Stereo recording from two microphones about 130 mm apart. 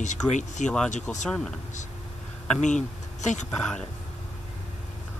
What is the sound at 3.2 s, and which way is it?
Speech, 65° left (ahead or behind).